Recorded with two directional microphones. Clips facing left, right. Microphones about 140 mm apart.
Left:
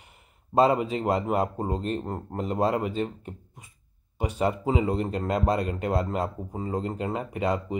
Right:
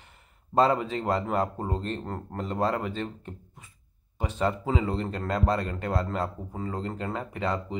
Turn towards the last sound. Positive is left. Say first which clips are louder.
# left 3 dB
turn(degrees=15)  # may be behind; listen again after turning